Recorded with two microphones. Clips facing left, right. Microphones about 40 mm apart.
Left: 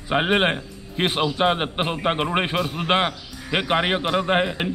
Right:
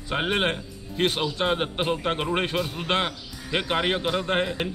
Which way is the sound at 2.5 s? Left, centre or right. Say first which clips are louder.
Left 3 dB; centre.